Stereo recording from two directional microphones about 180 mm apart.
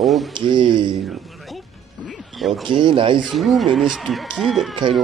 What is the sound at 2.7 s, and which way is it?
Speech, 25° right (ahead or behind).